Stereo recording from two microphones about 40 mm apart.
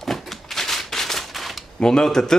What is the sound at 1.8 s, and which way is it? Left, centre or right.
Speech, centre.